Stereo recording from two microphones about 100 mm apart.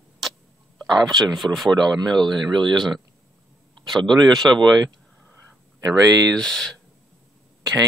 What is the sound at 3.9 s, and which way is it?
Speech, 50° right (ahead or behind).